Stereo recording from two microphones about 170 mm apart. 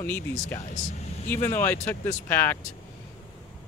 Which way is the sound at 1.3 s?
15° left (ahead or behind).